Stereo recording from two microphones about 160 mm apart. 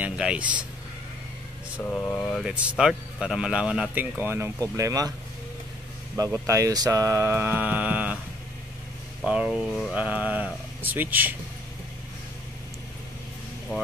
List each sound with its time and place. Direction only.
0.0 s speech: 5° right (ahead or behind)
1.8 s speech: 10° left (ahead or behind)
2.4 s speech: 5° right (ahead or behind); by 5.1 s 20° right (ahead or behind)
6.4 s speech: 20° right (ahead or behind)
9.2 s speech: 5° right (ahead or behind)